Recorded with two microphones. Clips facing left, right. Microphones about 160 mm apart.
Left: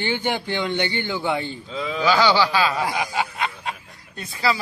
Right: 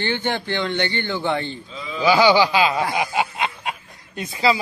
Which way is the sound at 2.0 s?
15° right (ahead or behind).